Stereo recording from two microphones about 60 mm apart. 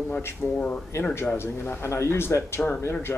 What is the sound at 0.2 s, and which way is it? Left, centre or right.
Speech, left.